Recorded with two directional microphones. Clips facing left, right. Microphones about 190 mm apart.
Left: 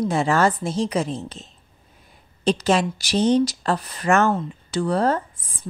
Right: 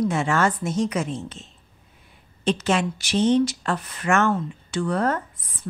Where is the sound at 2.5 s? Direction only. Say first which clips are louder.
Left 3 dB; 35° left (ahead or behind).